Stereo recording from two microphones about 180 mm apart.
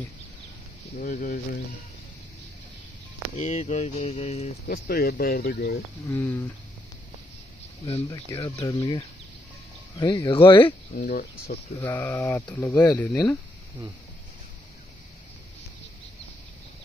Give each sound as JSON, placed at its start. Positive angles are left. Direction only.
{"t": 0.9, "sound": "speech", "side_deg": 45}
{"t": 3.3, "sound": "a sound", "side_deg": 40}
{"t": 4.6, "sound": "speech", "side_deg": 60}
{"t": 6.0, "sound": "speech", "side_deg": 10}
{"t": 8.1, "sound": "speech", "side_deg": 20}
{"t": 10.9, "sound": "speech", "side_deg": 45}
{"t": 11.8, "sound": "speech", "side_deg": 10}